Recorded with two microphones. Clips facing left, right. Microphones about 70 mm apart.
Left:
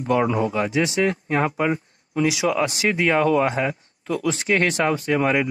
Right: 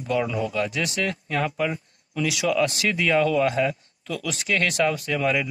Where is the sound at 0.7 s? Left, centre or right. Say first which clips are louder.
Left 6 dB; left.